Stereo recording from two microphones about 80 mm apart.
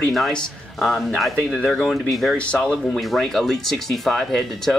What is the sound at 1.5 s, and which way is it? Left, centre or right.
Speech, centre.